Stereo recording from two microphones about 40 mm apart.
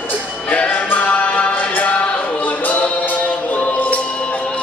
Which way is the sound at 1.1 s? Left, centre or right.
Left.